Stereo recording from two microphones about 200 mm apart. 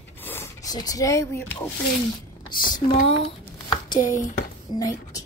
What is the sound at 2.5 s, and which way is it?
Speech, 25° left (ahead or behind).